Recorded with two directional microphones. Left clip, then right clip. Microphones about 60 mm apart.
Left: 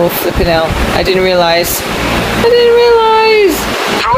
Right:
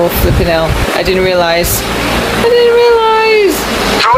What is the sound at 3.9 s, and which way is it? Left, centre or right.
Waves, centre.